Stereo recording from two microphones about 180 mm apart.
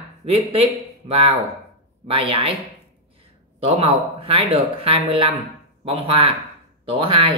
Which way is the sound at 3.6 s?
35° right (ahead or behind).